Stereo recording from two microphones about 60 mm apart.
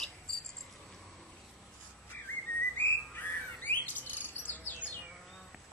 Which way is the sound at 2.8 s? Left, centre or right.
Left.